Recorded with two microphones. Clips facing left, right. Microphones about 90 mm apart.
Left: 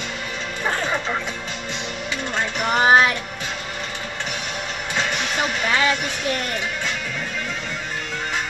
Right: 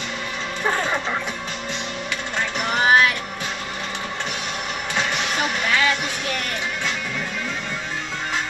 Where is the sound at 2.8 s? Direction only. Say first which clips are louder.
Left 2 dB; 30° left (ahead or behind).